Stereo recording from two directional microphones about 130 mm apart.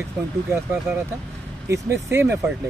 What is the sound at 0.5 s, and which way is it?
Speech, 20° right (ahead or behind).